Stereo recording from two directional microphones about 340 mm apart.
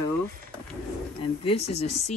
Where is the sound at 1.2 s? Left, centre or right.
Centre.